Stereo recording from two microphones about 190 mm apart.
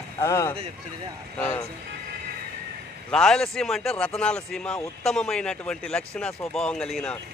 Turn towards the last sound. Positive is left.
turn(degrees=5)  # may be behind; listen again after turning